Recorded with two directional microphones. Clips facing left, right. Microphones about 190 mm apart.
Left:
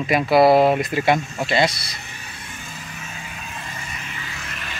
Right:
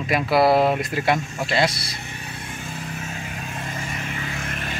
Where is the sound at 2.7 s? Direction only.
40° right (ahead or behind).